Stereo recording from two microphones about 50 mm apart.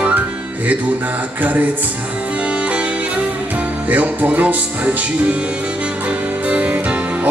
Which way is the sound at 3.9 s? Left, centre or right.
Right.